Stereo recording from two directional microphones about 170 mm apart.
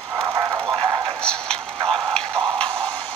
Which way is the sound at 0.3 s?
15° right (ahead or behind).